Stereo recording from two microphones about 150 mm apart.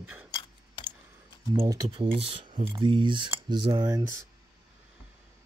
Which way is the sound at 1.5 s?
20° right (ahead or behind).